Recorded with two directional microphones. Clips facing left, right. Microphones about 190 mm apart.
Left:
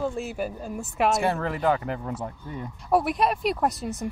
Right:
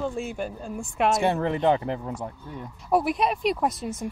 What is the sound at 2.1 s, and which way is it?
Speech, 5° left (ahead or behind).